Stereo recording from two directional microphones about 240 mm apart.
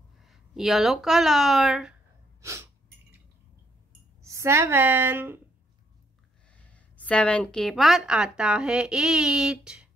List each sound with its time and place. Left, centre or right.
0.2 s speech: centre
2.4 s sneeze: centre
4.2 s a woman's voice: centre
6.5 s a woman's voice: centre